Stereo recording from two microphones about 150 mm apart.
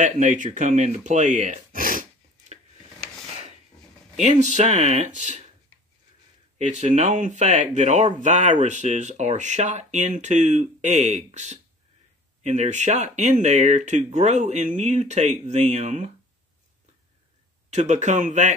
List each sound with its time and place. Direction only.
0.0 s speech: 55° right (ahead or behind)
4.2 s speech: 50° right (ahead or behind)
6.6 s speech: 55° right (ahead or behind)
17.6 s speech: 50° right (ahead or behind)